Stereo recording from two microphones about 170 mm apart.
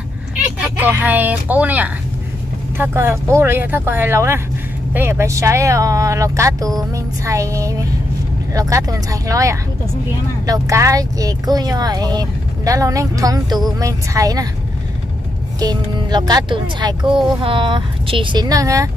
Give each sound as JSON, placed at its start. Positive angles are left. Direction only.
{"t": 0.7, "sound": "speech", "side_deg": -10}
{"t": 15.6, "sound": "speech", "side_deg": -25}